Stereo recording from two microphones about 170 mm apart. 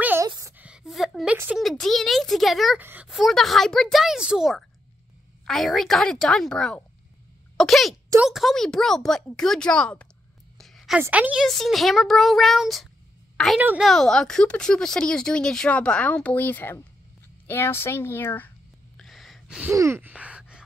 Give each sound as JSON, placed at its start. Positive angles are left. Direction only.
{"t": 0.0, "sound": "a sound", "side_deg": -10}
{"t": 0.3, "sound": "a woman's voice", "side_deg": -15}
{"t": 10.6, "sound": "a sound", "side_deg": 0}
{"t": 11.0, "sound": "speech", "side_deg": -10}
{"t": 13.6, "sound": "a woman's voice", "side_deg": -10}
{"t": 13.8, "sound": "a woman's voice", "side_deg": 0}
{"t": 18.9, "sound": "gasp", "side_deg": 0}
{"t": 19.7, "sound": "speech", "side_deg": -15}